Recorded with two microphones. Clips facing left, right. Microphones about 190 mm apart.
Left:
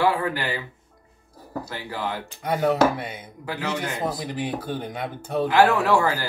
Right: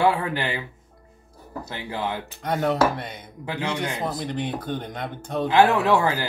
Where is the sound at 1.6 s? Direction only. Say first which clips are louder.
Right 1 dB; 20° right (ahead or behind).